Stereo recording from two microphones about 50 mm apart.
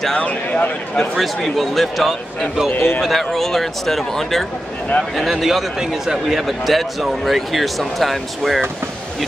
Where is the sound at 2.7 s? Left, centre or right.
Left.